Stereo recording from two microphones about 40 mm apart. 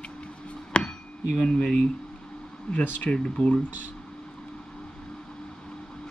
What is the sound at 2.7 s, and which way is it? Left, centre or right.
Speech, left.